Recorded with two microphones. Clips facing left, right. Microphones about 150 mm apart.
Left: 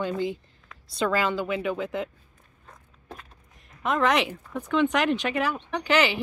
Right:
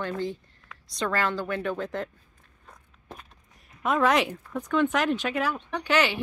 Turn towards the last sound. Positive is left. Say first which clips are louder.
# left 1 dB
turn(degrees=0)  # may be behind; listen again after turning